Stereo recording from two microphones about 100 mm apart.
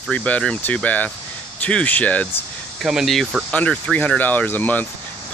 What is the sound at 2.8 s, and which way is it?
Speech, 5° right (ahead or behind).